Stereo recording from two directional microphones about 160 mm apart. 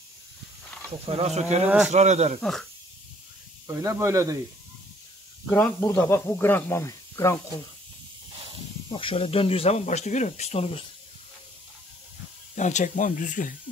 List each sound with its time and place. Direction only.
1.0 s speech: 40° right (ahead or behind)
2.4 s speech: 5° left (ahead or behind)
3.6 s speech: 15° right (ahead or behind)
5.5 s speech: 10° left (ahead or behind)
8.9 s speech: 35° left (ahead or behind)
12.5 s speech: 50° left (ahead or behind)